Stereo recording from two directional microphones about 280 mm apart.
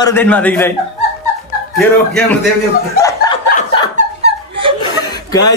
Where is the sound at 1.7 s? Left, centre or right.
Centre.